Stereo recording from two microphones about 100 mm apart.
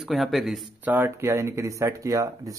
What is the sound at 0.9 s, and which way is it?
Speech, 20° right (ahead or behind).